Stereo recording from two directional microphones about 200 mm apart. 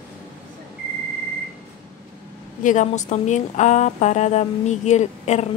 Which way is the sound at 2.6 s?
40° left (ahead or behind).